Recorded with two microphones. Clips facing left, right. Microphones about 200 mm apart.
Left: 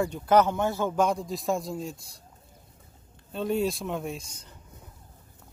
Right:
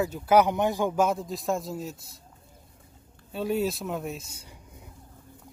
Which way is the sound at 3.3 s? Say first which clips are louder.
Even; 5° right (ahead or behind).